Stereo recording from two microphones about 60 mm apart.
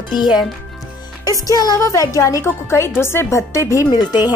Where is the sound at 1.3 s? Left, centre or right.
Left.